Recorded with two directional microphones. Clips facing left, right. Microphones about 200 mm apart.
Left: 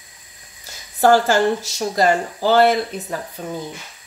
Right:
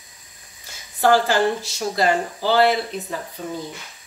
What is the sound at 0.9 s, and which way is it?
Speech, 45° left (ahead or behind).